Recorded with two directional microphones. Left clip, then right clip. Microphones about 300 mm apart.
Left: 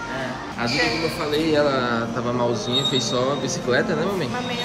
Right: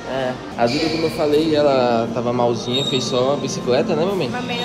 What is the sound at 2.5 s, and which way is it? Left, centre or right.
Speech, centre.